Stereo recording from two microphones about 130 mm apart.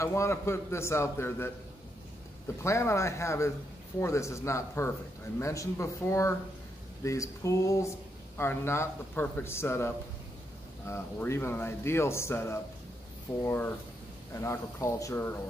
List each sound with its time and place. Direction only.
0.0 s a man's voice: 20° left (ahead or behind)
2.6 s a man's voice: 20° left (ahead or behind)